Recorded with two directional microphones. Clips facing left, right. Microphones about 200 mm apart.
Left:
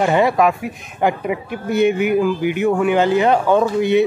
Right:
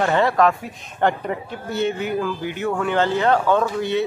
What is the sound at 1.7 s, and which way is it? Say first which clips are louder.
Speech: left 7 dB; 15° left (ahead or behind).